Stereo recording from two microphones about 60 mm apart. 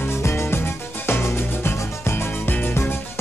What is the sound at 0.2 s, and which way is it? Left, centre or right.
Music, left.